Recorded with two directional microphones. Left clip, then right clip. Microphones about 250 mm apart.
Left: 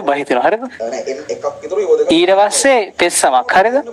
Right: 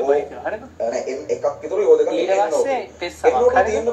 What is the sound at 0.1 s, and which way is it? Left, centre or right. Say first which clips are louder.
Speech: left 7 dB; left.